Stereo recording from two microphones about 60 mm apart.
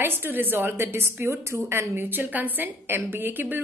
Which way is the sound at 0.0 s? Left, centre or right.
Right.